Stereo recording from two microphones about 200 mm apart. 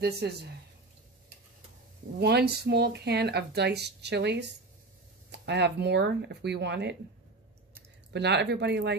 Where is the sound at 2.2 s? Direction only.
55° right (ahead or behind).